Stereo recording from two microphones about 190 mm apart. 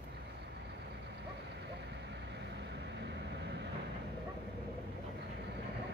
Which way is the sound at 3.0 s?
65° right (ahead or behind).